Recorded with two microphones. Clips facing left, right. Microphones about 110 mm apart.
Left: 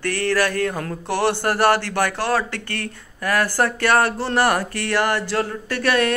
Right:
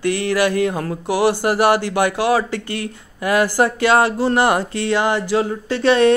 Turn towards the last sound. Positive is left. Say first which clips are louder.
# right 6 dB
turn(degrees=-25)  # may be behind; listen again after turning